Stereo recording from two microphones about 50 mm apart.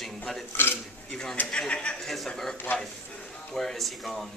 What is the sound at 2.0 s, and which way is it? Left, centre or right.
Speech, centre.